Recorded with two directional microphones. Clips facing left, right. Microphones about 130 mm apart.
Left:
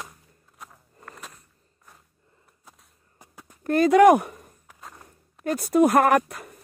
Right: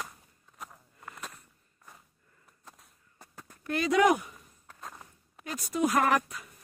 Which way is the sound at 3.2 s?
15° left (ahead or behind).